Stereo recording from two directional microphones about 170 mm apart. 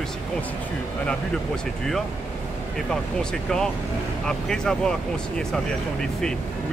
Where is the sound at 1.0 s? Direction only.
5° left (ahead or behind).